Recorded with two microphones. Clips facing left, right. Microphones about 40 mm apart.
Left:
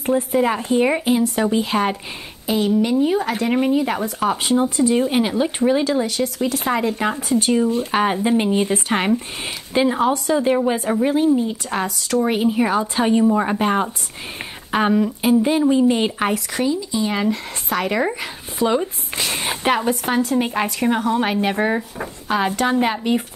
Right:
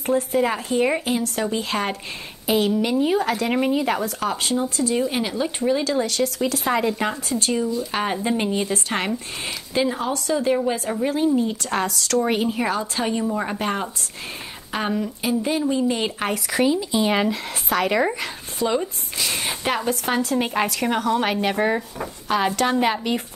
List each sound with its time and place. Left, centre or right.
0.0 s speech: centre
2.4 s speech: centre
4.0 s speech: centre
7.3 s speech: centre
8.5 s speech: left
8.8 s speech: centre
16.5 s speech: centre
17.3 s speech: centre